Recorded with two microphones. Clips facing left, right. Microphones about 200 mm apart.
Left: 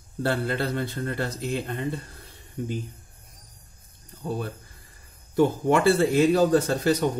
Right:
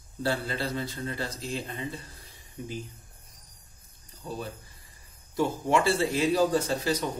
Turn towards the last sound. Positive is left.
turn(degrees=55)  # may be behind; listen again after turning